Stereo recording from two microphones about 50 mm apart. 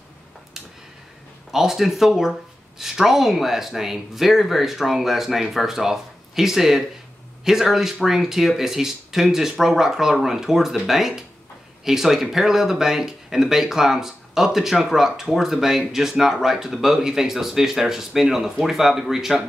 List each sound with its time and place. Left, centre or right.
1.5 s speech: centre